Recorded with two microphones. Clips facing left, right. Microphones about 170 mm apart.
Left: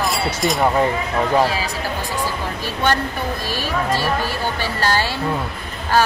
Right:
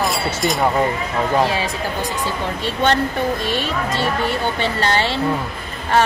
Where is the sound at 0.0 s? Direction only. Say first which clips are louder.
Even; centre (ahead or behind).